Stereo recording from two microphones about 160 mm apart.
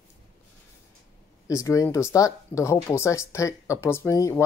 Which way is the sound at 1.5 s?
20° left (ahead or behind).